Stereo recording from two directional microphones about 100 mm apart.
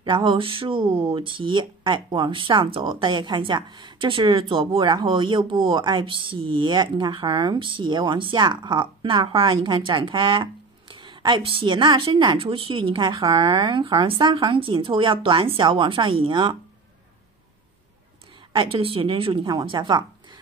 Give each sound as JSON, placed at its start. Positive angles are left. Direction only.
{"t": 0.0, "sound": "speech", "side_deg": -55}
{"t": 18.5, "sound": "speech", "side_deg": -65}